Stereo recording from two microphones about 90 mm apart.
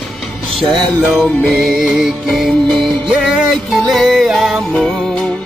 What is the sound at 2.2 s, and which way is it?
Music, centre (ahead or behind).